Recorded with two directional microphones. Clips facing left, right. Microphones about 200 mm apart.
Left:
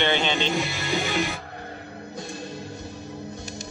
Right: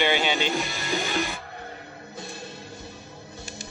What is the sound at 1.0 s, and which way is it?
Music, 15° left (ahead or behind).